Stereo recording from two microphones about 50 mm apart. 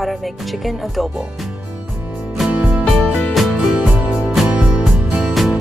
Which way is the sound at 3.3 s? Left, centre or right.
Centre.